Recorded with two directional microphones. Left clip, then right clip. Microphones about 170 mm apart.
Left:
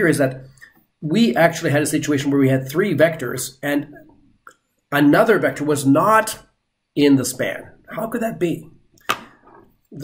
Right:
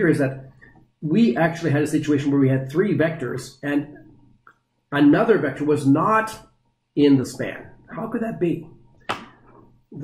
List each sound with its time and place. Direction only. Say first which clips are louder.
1.0 s speech: left 4 dB; 20° left (ahead or behind)
4.8 s speech: left 3 dB; 15° left (ahead or behind)